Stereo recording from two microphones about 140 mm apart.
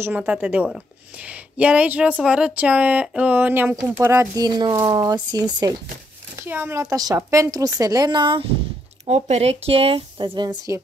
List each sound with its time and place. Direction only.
0.0 s speech: 15° right (ahead or behind)
4.5 s speech: 30° right (ahead or behind)
6.3 s a woman's voice: 15° right (ahead or behind); by 8.5 s 35° right (ahead or behind)
9.0 s speech: 50° right (ahead or behind); by 10.8 s 30° right (ahead or behind)